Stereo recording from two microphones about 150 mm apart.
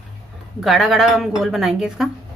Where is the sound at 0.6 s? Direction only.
Centre (ahead or behind).